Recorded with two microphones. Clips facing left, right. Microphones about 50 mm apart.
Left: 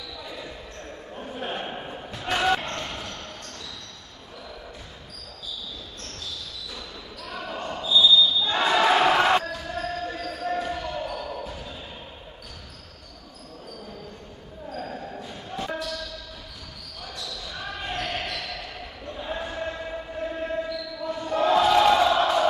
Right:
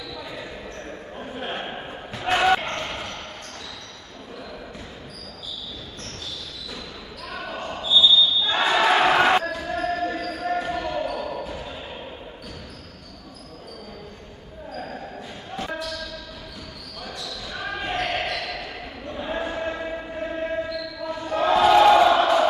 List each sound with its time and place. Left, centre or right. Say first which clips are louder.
0.2 s basketball bounce: right 1 dB; right
1.1 s a sound: even; centre
2.2 s basketball bounce: right 4 dB; right
7.2 s basketball bounce: right 1 dB; right
14.8 s basketball bounce: even; centre
17.0 s basketball bounce: right 2 dB; right